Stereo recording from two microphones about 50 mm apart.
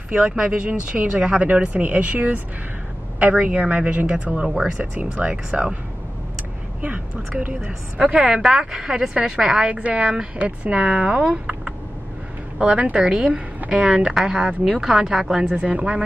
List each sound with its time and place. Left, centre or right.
0.1 s speech: centre
6.8 s a woman's voice: right; by 9.7 s centre
9.7 s speech: right
12.5 s a woman's voice: right; by 15.4 s centre
15.4 s speech: right